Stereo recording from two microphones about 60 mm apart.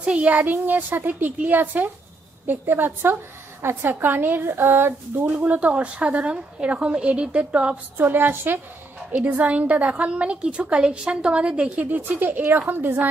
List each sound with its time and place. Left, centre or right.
0.5 s a woman's voice: right
5.2 s a woman's voice: right
8.0 s a woman's voice: right; by 11.8 s centre
11.8 s a woman's voice: right
12.6 s a woman's voice: right